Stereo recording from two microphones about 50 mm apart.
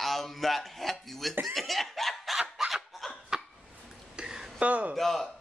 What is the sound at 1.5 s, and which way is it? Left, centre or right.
Snicker, centre.